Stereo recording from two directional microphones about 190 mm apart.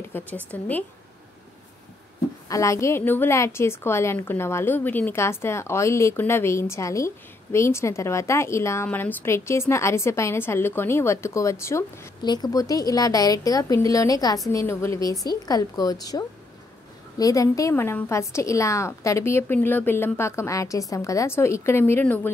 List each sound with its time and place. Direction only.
0.0 s a woman's voice: 10° left (ahead or behind)
2.4 s a woman's voice: 15° left (ahead or behind)